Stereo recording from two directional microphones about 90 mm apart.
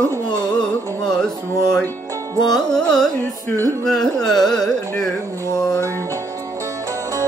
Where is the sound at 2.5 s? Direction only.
5° left (ahead or behind).